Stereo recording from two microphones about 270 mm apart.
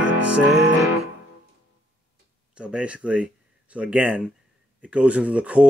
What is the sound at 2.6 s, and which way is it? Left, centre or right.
Speech, centre.